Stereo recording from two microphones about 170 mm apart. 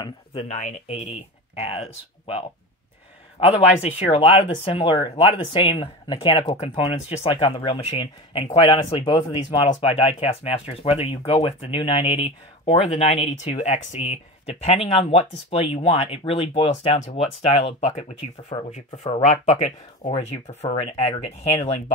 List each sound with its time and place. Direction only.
0.0 s speech: 35° left (ahead or behind)
19.2 s speech: 40° left (ahead or behind)